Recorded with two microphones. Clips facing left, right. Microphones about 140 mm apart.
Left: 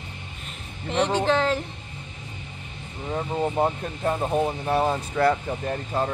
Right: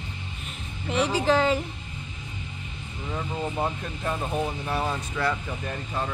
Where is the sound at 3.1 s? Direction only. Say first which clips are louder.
Left 5 dB; 35° left (ahead or behind).